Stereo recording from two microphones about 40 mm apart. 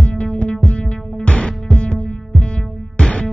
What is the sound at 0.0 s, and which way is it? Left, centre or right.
Music, left.